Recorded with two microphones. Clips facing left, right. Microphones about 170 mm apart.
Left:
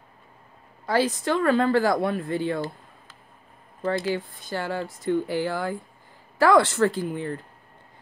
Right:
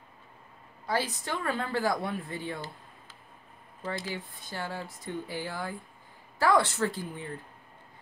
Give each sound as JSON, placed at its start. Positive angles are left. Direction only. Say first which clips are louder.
{"t": 0.8, "sound": "speech", "louder": "left 8 dB", "side_deg": 90}
{"t": 3.8, "sound": "speech", "louder": "left 10 dB", "side_deg": 60}
{"t": 6.3, "sound": "speech", "louder": "left 6 dB", "side_deg": 90}